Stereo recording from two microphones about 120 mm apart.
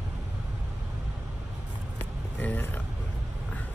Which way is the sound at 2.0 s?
15° left (ahead or behind).